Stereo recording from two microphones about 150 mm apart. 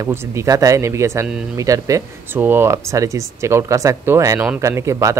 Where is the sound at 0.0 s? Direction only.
20° right (ahead or behind).